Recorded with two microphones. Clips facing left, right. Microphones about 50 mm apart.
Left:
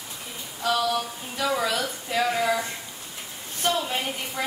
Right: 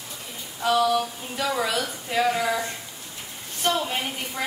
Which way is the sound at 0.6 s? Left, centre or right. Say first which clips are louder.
Right 3 dB; right.